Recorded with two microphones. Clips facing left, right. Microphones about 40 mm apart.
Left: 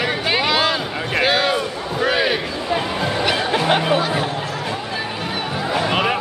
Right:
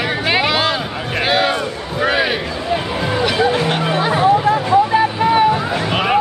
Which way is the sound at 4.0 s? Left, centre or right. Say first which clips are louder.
Right 4 dB; right.